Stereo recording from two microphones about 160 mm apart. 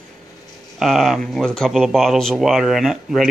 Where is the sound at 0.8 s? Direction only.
Centre (ahead or behind).